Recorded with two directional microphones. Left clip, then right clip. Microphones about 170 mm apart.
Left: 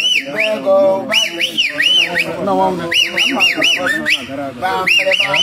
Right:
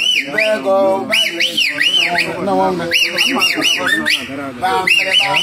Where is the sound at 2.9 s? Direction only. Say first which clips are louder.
Even; 35° left (ahead or behind).